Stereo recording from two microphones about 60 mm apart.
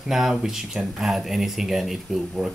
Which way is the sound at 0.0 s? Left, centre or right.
Centre.